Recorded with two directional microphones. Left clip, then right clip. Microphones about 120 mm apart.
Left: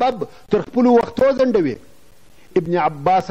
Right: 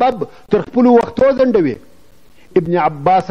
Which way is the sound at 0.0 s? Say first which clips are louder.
Right 4 dB; 35° right (ahead or behind).